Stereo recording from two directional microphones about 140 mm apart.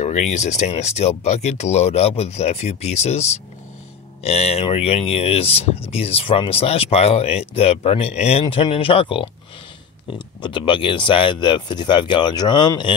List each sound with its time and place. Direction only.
0.0 s speech: 60° left (ahead or behind); by 12.9 s 35° left (ahead or behind)